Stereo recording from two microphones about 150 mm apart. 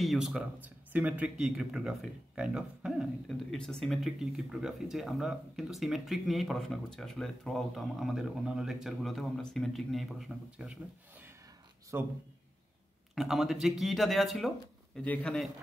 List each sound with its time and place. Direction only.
0.0 s a man's voice: centre (ahead or behind)
13.1 s speech: centre (ahead or behind)